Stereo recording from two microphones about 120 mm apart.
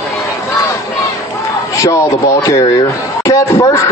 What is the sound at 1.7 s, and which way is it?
Speech, 25° left (ahead or behind).